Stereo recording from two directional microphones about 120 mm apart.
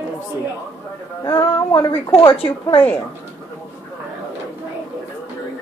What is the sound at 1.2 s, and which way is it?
Female singing, 45° left (ahead or behind).